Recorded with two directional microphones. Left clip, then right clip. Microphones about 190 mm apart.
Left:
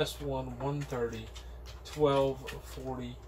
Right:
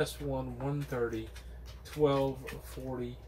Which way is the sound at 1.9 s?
10° left (ahead or behind).